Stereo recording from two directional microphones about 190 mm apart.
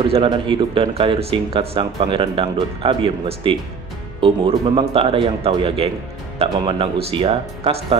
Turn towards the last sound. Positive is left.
turn(degrees=-30)  # may be behind; listen again after turning